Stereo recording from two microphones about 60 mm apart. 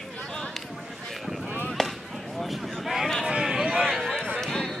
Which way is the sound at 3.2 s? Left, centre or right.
Centre.